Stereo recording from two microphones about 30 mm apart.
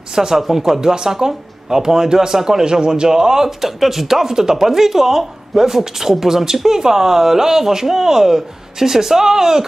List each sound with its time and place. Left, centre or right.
0.1 s a woman's voice: centre
0.7 s a woman's voice: right